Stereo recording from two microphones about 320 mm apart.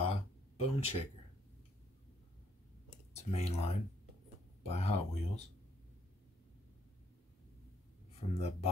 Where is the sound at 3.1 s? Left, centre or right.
Centre.